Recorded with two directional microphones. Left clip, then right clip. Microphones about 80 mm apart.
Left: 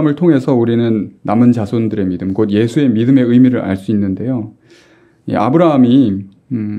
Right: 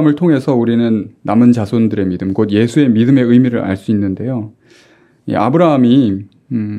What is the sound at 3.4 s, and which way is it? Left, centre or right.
Speech, right.